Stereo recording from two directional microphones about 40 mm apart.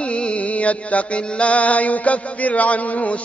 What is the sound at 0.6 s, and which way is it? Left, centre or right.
Mantra, left.